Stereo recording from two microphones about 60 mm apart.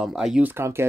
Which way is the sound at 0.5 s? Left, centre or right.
Right.